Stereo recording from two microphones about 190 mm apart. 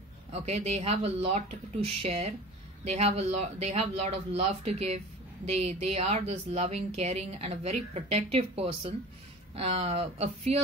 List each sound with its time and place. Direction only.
0.3 s speech: 35° right (ahead or behind)